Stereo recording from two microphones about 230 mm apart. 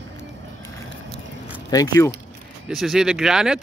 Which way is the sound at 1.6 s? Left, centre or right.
Centre.